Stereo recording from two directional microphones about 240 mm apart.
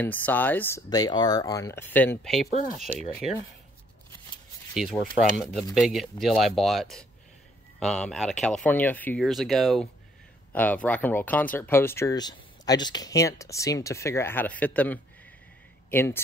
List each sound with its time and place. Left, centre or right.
0.0 s speech: centre
4.7 s speech: centre